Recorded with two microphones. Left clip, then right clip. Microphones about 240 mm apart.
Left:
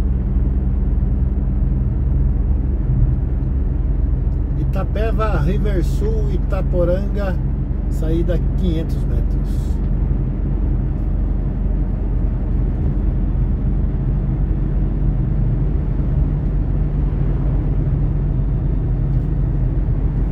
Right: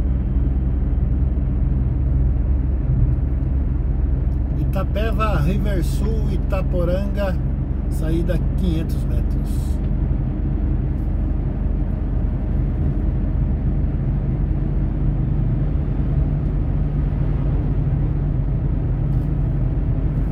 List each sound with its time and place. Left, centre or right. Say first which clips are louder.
4.7 s speech: left 1 dB; centre